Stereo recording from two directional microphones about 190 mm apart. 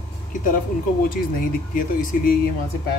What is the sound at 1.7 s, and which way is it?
Speech, 45° left (ahead or behind).